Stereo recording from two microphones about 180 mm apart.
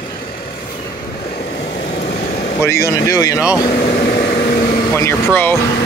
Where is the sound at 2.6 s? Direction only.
15° left (ahead or behind).